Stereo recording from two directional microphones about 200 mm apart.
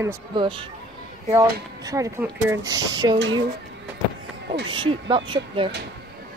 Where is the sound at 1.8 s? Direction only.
15° right (ahead or behind).